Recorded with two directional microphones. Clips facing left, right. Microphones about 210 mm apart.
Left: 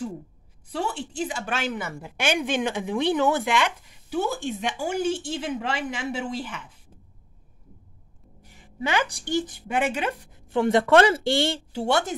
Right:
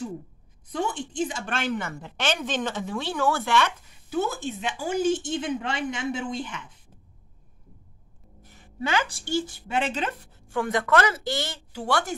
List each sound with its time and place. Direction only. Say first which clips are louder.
0.7 s a woman's voice: even; 5° left (ahead or behind)
8.4 s a woman's voice: even; 15° left (ahead or behind)
10.5 s speech: left 5 dB; 25° left (ahead or behind)